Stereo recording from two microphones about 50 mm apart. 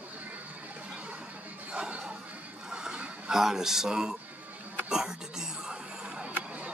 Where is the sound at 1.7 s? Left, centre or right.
Centre.